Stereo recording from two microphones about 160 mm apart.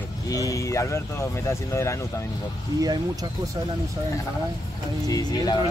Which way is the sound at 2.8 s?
25° right (ahead or behind).